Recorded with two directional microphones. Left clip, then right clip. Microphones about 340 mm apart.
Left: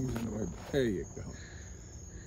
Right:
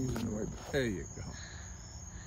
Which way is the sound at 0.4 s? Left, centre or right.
Centre.